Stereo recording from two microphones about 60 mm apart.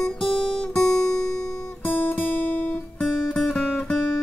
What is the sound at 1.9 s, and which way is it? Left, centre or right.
Guitar, left.